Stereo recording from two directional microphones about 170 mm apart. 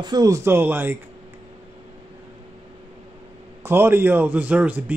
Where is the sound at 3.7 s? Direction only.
15° right (ahead or behind).